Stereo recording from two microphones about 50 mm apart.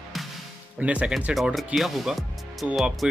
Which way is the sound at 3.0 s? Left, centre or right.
Centre.